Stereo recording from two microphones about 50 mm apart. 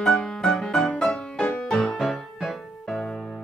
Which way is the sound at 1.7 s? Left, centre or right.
Centre.